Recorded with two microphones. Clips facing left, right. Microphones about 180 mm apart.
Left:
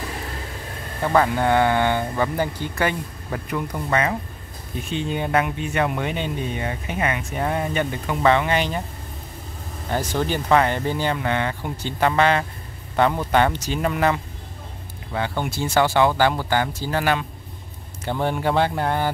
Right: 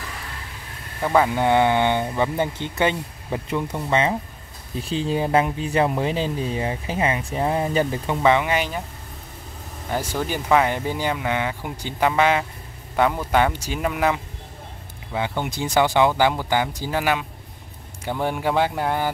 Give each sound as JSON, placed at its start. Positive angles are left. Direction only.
{"t": 1.0, "sound": "speech", "side_deg": -10}
{"t": 4.7, "sound": "speech", "side_deg": -35}
{"t": 8.2, "sound": "speech", "side_deg": -15}
{"t": 9.8, "sound": "speech", "side_deg": -5}